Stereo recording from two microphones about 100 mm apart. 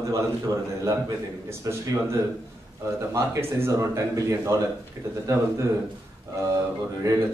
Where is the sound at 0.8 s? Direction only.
35° right (ahead or behind).